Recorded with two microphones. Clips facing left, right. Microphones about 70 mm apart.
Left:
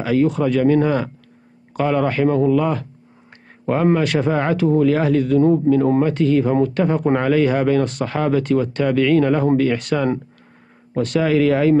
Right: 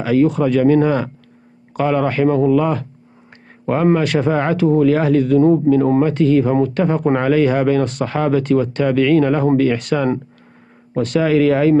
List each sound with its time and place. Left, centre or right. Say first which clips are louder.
0.0 s speech: right 3 dB; right